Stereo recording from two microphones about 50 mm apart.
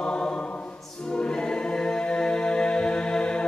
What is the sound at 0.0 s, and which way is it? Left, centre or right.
Choir, left.